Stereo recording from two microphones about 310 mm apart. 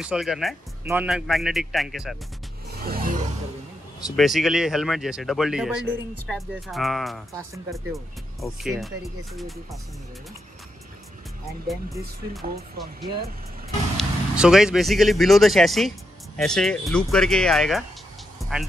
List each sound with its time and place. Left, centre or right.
0.0 s speech: centre
2.8 s a sound: right
4.2 s speech: centre
11.6 s speech: centre
12.5 s speech: right
13.9 s speech: centre
18.4 s music: centre